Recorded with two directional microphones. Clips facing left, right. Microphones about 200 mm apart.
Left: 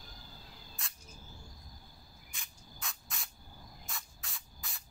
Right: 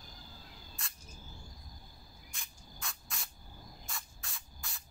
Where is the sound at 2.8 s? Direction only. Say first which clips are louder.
Even; centre (ahead or behind).